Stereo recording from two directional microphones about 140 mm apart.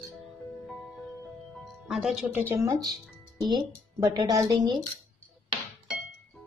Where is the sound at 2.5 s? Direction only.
20° right (ahead or behind).